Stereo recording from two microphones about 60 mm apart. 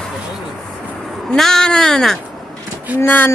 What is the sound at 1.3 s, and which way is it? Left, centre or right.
Speech, centre.